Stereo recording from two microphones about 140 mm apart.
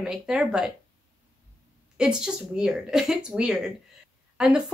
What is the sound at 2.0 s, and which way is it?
A woman's voice, 5° right (ahead or behind).